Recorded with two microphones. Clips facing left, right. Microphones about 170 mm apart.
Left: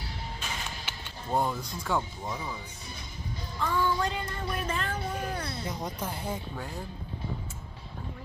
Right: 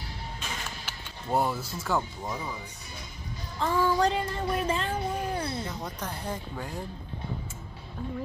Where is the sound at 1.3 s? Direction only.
5° right (ahead or behind).